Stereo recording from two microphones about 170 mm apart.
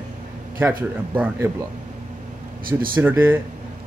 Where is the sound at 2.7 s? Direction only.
15° right (ahead or behind).